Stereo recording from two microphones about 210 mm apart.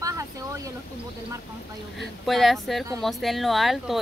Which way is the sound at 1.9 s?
Centre (ahead or behind).